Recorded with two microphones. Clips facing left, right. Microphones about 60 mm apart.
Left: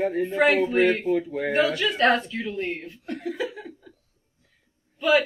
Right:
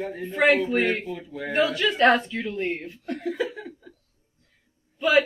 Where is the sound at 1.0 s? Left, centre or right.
Left.